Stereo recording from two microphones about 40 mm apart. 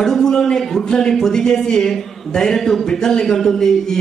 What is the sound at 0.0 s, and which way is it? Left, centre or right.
Speech, centre.